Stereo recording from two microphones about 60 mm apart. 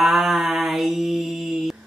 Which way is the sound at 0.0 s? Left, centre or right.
Centre.